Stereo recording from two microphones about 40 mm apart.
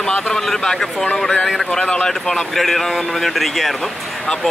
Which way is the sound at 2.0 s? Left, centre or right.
Centre.